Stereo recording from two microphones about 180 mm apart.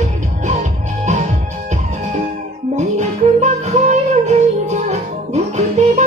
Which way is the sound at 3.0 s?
35° right (ahead or behind).